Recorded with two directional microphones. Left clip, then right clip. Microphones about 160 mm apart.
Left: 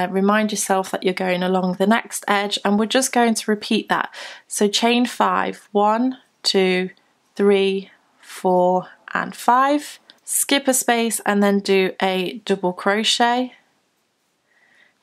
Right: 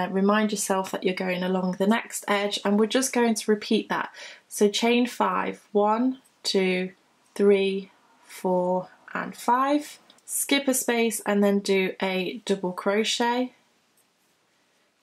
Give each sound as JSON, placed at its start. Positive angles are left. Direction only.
{"t": 0.0, "sound": "speech", "side_deg": 35}